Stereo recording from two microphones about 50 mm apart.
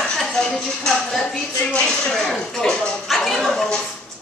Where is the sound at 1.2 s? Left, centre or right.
Centre.